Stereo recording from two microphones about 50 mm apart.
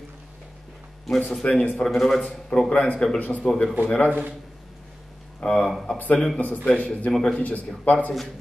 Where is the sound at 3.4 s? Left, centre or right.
Centre.